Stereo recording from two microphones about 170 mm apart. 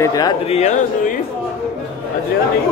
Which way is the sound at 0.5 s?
40° left (ahead or behind).